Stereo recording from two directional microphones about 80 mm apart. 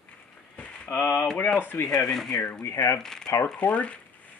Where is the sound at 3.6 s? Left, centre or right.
Centre.